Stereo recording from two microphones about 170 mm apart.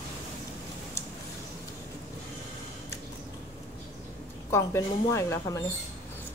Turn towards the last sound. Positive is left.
turn(degrees=20)  # may be behind; listen again after turning